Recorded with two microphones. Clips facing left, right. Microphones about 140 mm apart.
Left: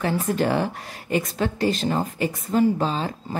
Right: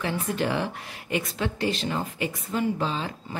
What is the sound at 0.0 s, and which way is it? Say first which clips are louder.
A woman's voice: left 5 dB; 40° left (ahead or behind).